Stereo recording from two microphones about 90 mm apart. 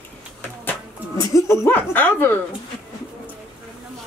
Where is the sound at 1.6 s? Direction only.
20° left (ahead or behind).